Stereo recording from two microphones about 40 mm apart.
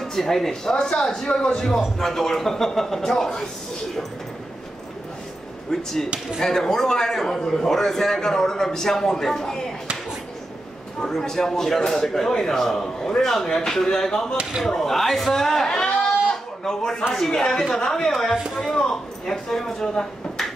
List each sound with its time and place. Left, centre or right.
0.0 s speech: centre
0.5 s a man's voice: centre
5.7 s a man's voice: centre
11.0 s a man's voice: centre
14.3 s speech: right
14.8 s a man's voice: centre